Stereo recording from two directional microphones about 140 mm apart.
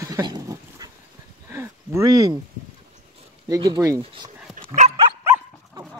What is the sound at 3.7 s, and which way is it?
Speech, 25° right (ahead or behind).